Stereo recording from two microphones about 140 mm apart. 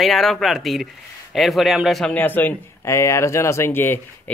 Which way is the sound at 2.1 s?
15° left (ahead or behind).